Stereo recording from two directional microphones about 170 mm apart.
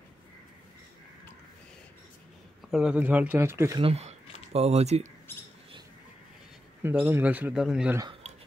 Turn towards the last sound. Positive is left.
turn(degrees=-5)  # may be behind; listen again after turning